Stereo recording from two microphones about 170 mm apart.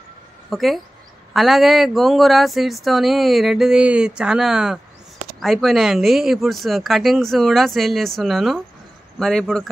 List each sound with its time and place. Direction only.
0.5 s speech: centre (ahead or behind)